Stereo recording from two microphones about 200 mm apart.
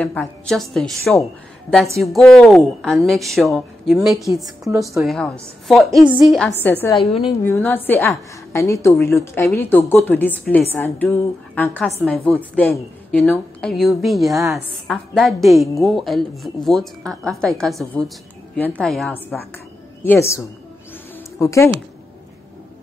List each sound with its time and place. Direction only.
0.0 s a woman's voice: 10° left (ahead or behind)
7.0 s a woman's voice: 30° left (ahead or behind)
7.4 s a woman's voice: 10° left (ahead or behind)